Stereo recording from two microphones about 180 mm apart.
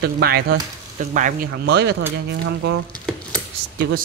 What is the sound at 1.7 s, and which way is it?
Speech, 70° right (ahead or behind).